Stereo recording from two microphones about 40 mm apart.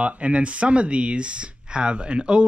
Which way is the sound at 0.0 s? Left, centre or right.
Right.